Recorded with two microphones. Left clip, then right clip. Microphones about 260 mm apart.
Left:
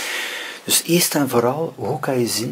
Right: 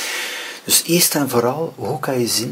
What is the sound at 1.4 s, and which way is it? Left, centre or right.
Speech, centre.